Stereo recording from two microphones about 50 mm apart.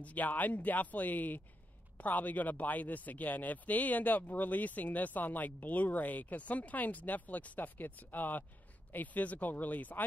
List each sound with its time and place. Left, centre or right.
0.0 s speech: left